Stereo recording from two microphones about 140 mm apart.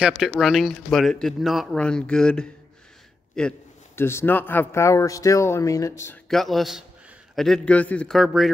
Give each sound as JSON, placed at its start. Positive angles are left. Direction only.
{"t": 0.0, "sound": "speech", "side_deg": -5}
{"t": 3.9, "sound": "speech", "side_deg": 15}
{"t": 6.2, "sound": "speech", "side_deg": 0}